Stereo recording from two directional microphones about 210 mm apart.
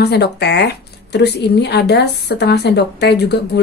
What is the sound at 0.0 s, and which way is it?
Speech, 50° left (ahead or behind).